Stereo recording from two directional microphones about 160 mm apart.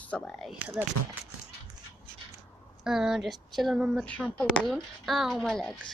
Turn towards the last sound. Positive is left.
turn(degrees=5)  # may be behind; listen again after turning